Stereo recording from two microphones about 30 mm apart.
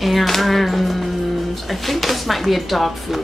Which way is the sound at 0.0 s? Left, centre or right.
Centre.